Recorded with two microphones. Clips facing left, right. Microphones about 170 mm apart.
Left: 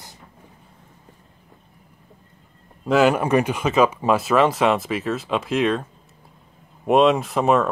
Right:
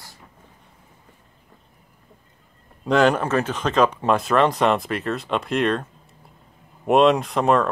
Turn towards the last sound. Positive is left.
turn(degrees=5)  # may be behind; listen again after turning